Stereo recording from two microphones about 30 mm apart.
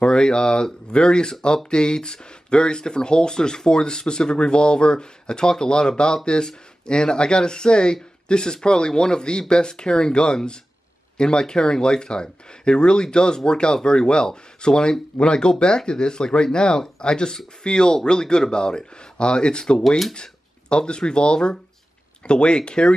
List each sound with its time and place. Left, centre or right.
0.0 s speech: left